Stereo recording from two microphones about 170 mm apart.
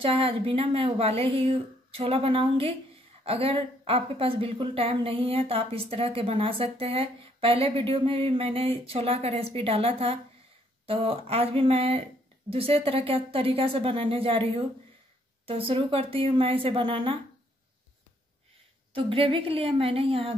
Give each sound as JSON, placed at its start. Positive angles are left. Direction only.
{"t": 0.0, "sound": "a woman's voice", "side_deg": -35}
{"t": 18.9, "sound": "a woman's voice", "side_deg": -35}